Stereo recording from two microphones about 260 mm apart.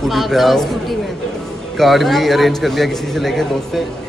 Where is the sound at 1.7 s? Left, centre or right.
Centre.